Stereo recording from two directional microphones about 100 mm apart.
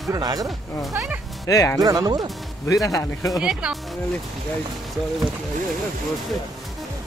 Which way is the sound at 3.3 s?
5° right (ahead or behind).